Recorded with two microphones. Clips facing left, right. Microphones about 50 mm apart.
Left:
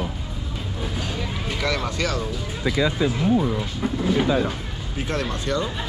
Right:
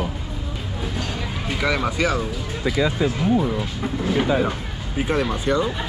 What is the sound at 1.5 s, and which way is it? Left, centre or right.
Speech, centre.